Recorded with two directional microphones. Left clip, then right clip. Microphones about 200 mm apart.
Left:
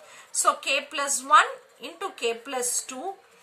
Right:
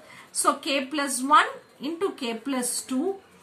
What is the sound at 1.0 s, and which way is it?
A woman's voice, 30° left (ahead or behind).